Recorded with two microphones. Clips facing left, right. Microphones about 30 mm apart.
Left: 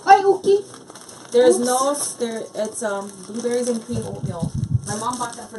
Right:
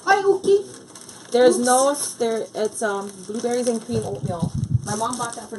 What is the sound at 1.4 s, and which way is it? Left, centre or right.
Speech, centre.